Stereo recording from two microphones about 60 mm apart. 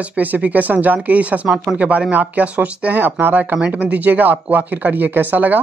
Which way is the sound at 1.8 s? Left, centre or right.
Right.